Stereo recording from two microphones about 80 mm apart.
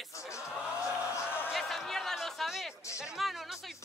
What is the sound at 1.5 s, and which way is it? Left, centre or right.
Music, centre.